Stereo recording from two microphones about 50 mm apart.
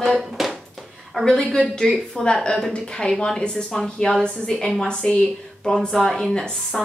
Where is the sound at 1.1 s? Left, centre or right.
Centre.